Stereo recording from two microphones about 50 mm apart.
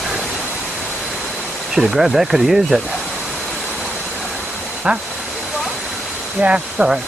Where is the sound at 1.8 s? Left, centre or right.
Centre.